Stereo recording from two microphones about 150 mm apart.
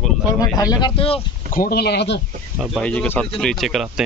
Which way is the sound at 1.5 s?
80° left.